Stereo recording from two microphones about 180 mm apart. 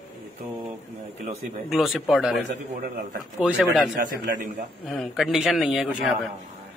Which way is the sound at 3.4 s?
5° right (ahead or behind).